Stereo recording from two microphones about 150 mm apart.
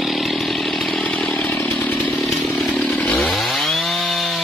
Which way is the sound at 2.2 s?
Centre (ahead or behind).